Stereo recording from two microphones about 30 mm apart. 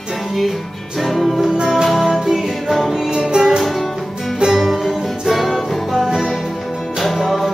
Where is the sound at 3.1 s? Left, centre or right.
Right.